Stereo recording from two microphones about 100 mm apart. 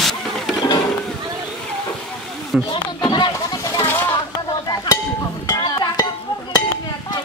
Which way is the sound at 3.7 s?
25° left (ahead or behind).